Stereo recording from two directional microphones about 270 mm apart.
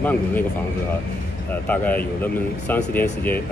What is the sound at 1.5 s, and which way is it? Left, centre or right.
Speech, centre.